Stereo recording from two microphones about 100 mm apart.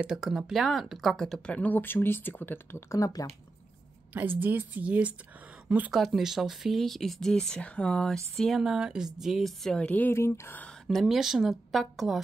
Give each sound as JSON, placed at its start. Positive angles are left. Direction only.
{"t": 0.0, "sound": "speech", "side_deg": -5}
{"t": 3.0, "sound": "speech", "side_deg": 35}
{"t": 4.1, "sound": "speech", "side_deg": -20}
{"t": 5.9, "sound": "speech", "side_deg": 0}
{"t": 9.8, "sound": "speech", "side_deg": 20}
{"t": 10.6, "sound": "speech", "side_deg": 5}